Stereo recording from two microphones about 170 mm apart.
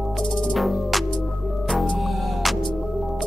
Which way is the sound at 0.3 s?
5° left (ahead or behind).